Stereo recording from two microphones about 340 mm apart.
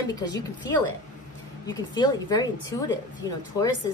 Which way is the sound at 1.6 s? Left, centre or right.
Centre.